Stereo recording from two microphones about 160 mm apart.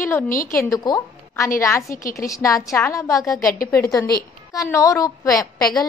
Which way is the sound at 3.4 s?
60° left (ahead or behind).